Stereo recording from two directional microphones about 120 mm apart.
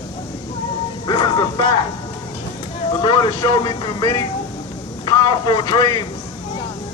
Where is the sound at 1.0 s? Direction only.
35° left (ahead or behind).